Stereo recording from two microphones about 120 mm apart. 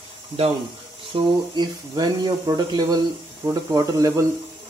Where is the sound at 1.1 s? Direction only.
35° right (ahead or behind).